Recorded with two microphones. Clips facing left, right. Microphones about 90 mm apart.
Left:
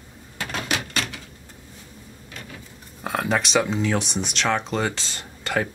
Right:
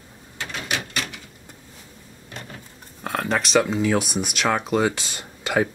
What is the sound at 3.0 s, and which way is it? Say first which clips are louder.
Speech: even; centre (ahead or behind).